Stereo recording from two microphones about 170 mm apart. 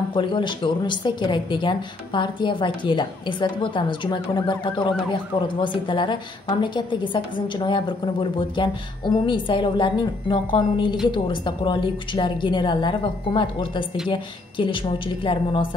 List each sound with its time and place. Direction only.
0.1 s a woman's voice: 30° left (ahead or behind)